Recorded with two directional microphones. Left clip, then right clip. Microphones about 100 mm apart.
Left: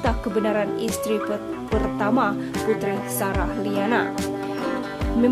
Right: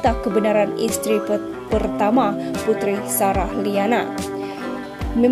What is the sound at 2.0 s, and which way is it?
A woman's voice, 40° right (ahead or behind).